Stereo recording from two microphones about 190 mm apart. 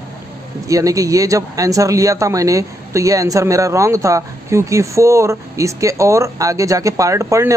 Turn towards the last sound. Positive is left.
turn(degrees=-15)  # may be behind; listen again after turning